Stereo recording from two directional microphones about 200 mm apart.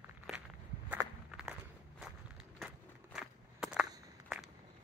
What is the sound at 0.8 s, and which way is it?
Walk, 5° right (ahead or behind).